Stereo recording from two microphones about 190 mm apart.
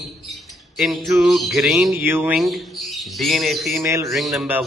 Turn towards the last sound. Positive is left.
turn(degrees=-5)  # may be behind; listen again after turning